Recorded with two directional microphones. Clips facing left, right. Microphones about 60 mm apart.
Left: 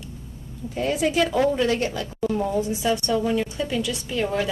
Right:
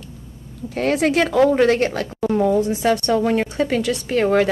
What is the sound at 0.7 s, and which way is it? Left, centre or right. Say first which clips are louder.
A woman's voice: right 4 dB; right.